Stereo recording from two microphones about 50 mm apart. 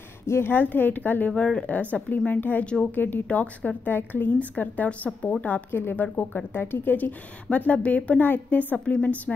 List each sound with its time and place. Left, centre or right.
0.3 s a woman's voice: left
1.3 s speech: left
1.7 s a woman's voice: left
2.6 s speech: left
2.9 s a woman's voice: left
5.7 s a woman's voice: left
8.2 s a woman's voice: left